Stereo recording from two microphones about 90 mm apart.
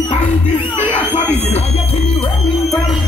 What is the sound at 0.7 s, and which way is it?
Crowd, 15° left (ahead or behind).